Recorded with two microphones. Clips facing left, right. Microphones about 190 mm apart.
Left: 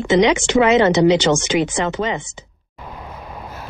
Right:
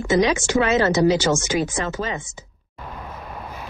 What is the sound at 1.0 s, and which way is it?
Speech, 20° left (ahead or behind).